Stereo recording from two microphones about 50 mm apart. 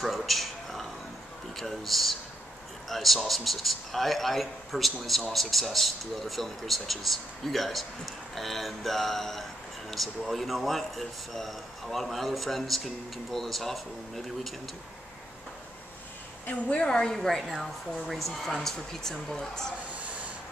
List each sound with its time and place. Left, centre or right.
0.0 s a sound: centre
1.6 s speech: centre
16.4 s a woman's voice: left
16.8 s speech: centre
17.4 s speech: centre